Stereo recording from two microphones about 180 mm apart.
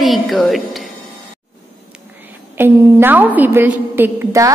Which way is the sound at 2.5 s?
10° right (ahead or behind).